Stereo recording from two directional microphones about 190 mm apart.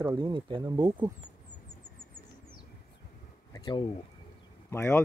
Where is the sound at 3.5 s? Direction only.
25° left (ahead or behind).